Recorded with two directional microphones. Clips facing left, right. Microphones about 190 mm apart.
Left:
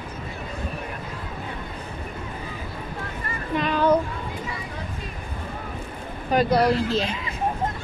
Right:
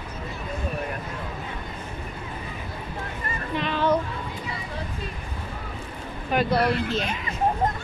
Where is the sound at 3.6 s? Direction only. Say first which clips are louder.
Left 3 dB; 45° left (ahead or behind).